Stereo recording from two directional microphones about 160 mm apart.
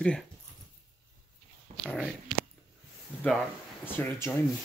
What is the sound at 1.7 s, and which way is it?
Speech, centre (ahead or behind).